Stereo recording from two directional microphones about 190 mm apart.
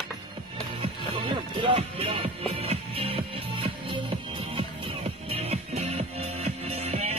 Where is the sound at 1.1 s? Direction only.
25° right (ahead or behind).